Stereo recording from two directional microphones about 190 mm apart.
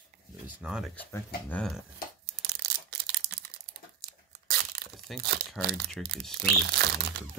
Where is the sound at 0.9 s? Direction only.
10° left (ahead or behind).